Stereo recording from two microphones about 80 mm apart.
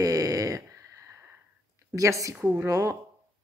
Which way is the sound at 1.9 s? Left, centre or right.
Right.